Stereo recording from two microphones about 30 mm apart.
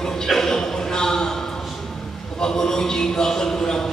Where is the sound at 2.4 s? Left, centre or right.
Left.